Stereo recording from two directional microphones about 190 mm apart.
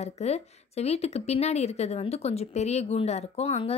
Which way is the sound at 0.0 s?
35° left (ahead or behind).